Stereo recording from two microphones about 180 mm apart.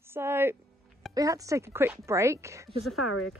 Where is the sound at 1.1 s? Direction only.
20° right (ahead or behind).